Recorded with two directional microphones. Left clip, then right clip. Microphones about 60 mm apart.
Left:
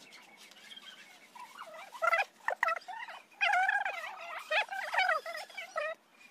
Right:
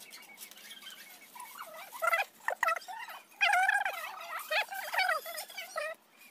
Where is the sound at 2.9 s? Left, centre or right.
Centre.